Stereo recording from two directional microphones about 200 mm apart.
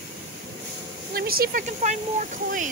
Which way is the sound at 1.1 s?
50° right (ahead or behind).